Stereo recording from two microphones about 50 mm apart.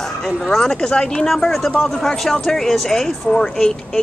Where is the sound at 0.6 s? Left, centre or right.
Centre.